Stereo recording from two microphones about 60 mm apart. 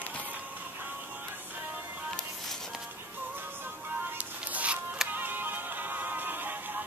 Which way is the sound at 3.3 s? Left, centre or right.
Right.